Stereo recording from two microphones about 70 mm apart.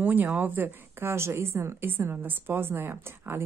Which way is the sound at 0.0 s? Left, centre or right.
Right.